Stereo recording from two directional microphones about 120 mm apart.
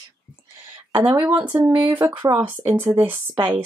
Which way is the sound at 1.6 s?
15° right (ahead or behind).